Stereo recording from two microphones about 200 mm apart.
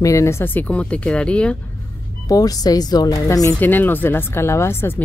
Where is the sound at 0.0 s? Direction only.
15° left (ahead or behind).